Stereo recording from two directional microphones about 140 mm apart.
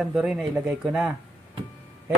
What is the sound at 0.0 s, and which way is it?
Speech, 5° right (ahead or behind).